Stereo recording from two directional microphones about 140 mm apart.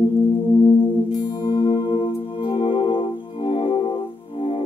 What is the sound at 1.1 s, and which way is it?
Music, 35° left (ahead or behind).